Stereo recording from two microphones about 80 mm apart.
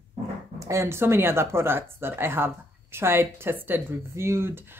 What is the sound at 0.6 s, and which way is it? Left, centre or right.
A woman's voice, right.